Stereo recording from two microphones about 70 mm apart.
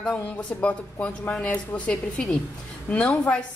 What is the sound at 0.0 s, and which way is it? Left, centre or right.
A woman's voice, centre.